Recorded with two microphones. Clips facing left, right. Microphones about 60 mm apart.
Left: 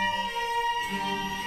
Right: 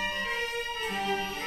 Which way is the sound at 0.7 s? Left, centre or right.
Right.